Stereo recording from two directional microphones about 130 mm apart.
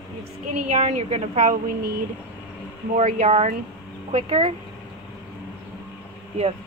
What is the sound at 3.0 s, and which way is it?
Speech, 90° right.